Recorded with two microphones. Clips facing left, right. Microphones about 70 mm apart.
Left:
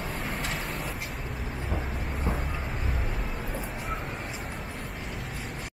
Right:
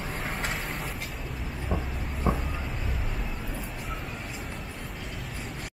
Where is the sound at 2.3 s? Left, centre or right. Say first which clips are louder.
Right 5 dB; right.